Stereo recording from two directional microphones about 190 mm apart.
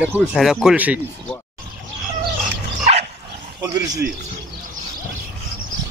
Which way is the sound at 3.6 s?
20° right (ahead or behind).